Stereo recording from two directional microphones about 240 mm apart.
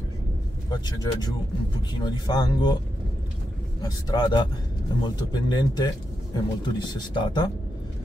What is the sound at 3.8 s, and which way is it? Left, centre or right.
Speech, centre.